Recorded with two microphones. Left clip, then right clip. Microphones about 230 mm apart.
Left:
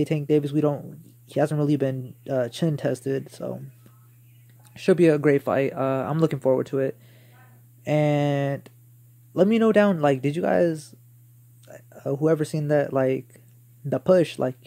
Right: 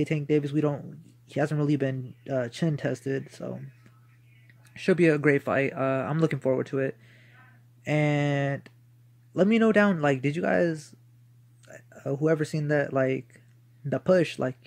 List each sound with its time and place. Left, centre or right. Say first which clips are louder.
0.0 s speech: left 4 dB; centre
4.6 s speech: left 4 dB; centre